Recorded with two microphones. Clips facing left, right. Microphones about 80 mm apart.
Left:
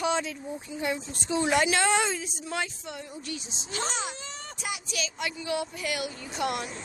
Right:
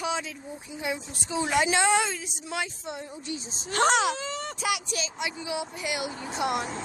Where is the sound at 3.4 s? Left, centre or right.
Right.